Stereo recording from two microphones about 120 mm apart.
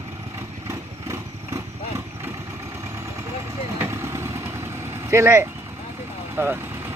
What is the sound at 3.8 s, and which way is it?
Vehicle, 25° right (ahead or behind).